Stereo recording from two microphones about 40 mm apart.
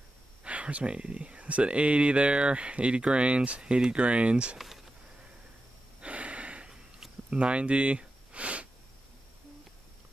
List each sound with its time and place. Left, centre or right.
0.4 s speech: right
4.6 s speech: centre
5.9 s gasp: right
7.2 s a sound: right